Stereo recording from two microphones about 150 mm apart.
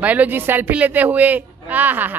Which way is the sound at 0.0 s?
10° right (ahead or behind).